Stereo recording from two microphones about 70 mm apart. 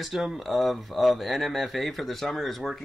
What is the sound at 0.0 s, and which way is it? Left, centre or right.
Speech, centre.